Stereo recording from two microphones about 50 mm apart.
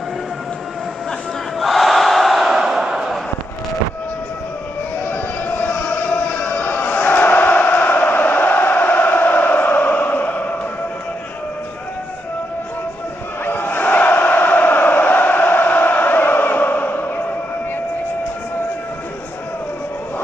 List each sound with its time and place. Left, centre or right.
1.6 s battle cry: centre
5.0 s a sound: left
13.4 s chant: left